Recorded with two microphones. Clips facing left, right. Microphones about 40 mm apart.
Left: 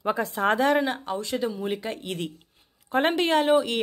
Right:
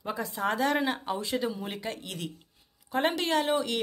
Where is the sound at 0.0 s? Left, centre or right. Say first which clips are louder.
Left 6 dB; left.